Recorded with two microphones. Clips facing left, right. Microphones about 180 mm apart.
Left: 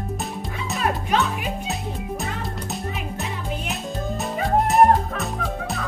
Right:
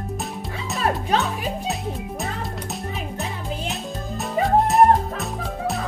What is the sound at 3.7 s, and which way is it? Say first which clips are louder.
Music: left 2 dB; centre (ahead or behind).